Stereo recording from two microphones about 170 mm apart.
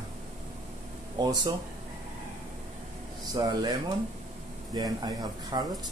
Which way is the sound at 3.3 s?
20° right (ahead or behind).